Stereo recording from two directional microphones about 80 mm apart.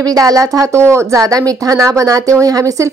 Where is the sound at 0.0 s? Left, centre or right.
Right.